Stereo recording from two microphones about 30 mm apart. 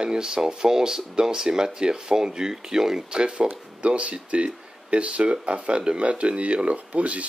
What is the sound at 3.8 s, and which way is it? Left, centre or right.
Speech, right.